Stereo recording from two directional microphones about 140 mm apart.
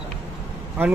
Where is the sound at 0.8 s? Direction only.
15° right (ahead or behind).